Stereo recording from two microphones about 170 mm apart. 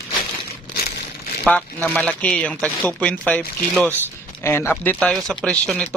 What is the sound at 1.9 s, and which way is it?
Speech, 5° left (ahead or behind).